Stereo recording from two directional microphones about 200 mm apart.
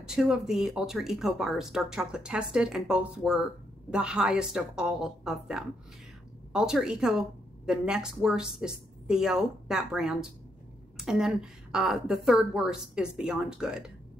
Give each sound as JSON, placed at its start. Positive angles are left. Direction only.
{"t": 0.0, "sound": "speech", "side_deg": -5}